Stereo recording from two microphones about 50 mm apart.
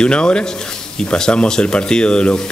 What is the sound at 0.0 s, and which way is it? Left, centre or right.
Speech, centre.